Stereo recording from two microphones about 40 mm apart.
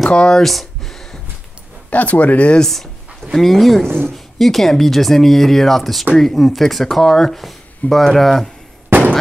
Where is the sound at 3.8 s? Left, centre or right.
Right.